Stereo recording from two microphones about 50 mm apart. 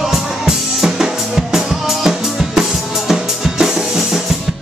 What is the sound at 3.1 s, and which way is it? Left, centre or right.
Drum, centre.